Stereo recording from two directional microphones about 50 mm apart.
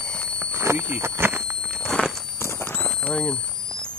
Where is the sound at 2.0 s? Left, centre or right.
Left.